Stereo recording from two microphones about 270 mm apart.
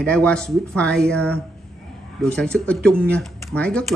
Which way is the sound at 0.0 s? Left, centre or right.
Centre.